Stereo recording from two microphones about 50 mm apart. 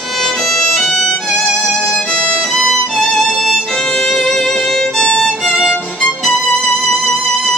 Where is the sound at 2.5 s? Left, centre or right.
Centre.